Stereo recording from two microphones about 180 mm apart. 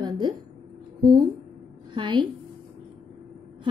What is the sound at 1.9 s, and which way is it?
Speech, 25° right (ahead or behind).